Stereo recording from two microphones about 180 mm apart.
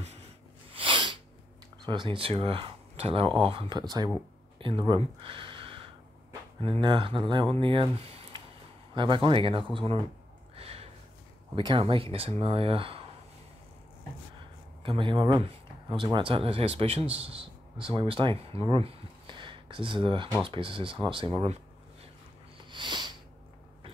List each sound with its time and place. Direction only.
0.7 s sneeze: 30° right (ahead or behind)
1.9 s speech: 25° right (ahead or behind)
10.5 s a sound: 35° right (ahead or behind)
11.5 s speech: 25° right (ahead or behind)
14.8 s speech: 25° right (ahead or behind)
18.7 s a sound: 30° right (ahead or behind)
20.4 s speech: 30° right (ahead or behind)
22.7 s sniff: 25° right (ahead or behind)